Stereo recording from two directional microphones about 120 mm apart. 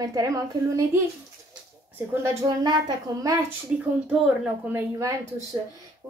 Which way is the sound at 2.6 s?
35° right (ahead or behind).